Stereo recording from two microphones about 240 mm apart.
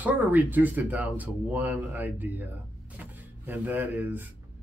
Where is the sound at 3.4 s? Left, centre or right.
Centre.